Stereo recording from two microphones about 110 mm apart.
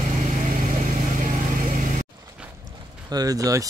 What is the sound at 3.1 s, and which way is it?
Speech, 35° right (ahead or behind).